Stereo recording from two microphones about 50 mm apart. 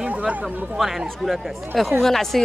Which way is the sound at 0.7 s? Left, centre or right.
Centre.